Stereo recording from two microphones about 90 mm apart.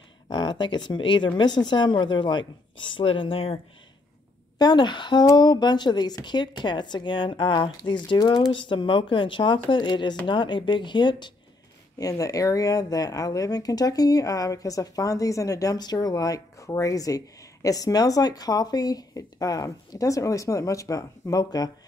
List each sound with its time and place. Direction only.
0.3 s speech: 55° left (ahead or behind); by 3.5 s 85° left
4.6 s a woman's voice: 50° left (ahead or behind)
12.0 s speech: 40° left (ahead or behind)